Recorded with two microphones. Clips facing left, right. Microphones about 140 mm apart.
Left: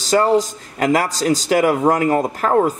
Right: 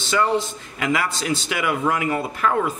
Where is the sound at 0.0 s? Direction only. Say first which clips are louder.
Left 6 dB; 40° left (ahead or behind).